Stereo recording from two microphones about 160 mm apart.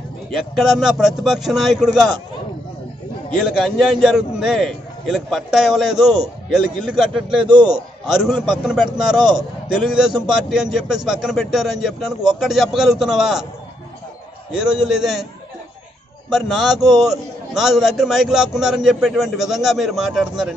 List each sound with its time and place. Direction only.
0.3 s a man's voice: centre (ahead or behind)
3.4 s a man's voice: centre (ahead or behind)
9.2 s a man's voice: 25° right (ahead or behind)
10.5 s a man's voice: 5° right (ahead or behind)
14.5 s a man's voice: 5° right (ahead or behind)
16.3 s a man's voice: centre (ahead or behind)